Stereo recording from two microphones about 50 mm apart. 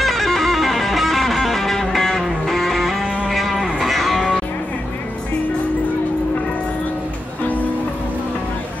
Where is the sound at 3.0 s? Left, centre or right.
Right.